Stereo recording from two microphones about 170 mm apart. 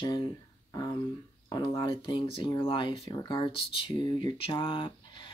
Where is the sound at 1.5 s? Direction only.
25° left (ahead or behind).